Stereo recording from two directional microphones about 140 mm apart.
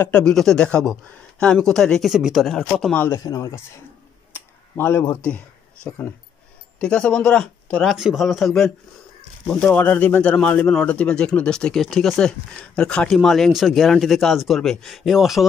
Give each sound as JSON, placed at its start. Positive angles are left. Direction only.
{"t": 0.0, "sound": "speech", "side_deg": 10}
{"t": 3.0, "sound": "speech", "side_deg": 20}
{"t": 4.3, "sound": "a sound", "side_deg": 15}
{"t": 6.8, "sound": "speech", "side_deg": 5}